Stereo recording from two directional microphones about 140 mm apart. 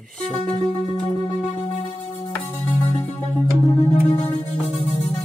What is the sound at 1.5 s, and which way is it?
Music, 40° left (ahead or behind).